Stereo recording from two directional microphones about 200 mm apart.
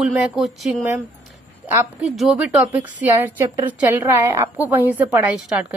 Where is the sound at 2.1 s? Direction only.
Centre (ahead or behind).